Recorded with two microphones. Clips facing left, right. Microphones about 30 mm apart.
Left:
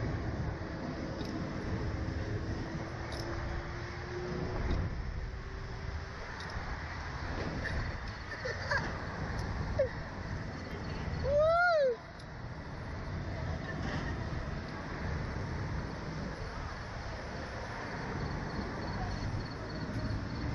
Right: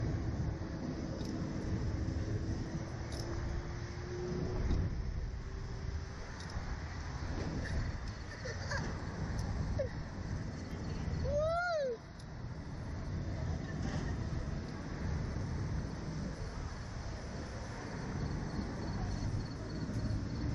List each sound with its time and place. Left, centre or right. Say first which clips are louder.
0.8 s vehicle: left 1 dB; left
4.1 s vehicle: left 1 dB; left
7.3 s vehicle: left 3 dB; left
11.0 s vehicle: left 6 dB; left
13.5 s vehicle: left 4 dB; left
15.7 s vehicle: left 2 dB; left
17.9 s vehicle: left 3 dB; left